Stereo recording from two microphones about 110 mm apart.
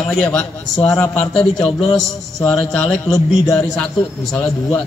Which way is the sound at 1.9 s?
5° left (ahead or behind).